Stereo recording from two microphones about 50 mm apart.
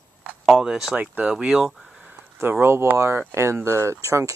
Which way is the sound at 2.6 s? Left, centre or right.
Right.